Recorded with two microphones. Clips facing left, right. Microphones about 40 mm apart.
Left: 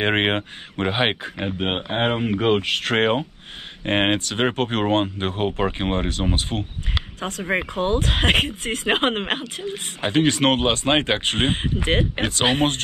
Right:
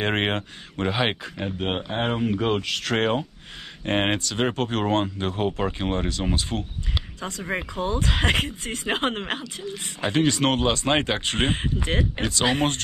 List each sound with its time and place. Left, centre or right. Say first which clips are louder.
0.0 s speech: left 4 dB; left
6.5 s speech: left 2 dB; left
7.2 s speech: left 6 dB; left